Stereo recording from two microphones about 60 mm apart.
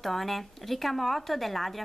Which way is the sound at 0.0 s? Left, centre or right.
Centre.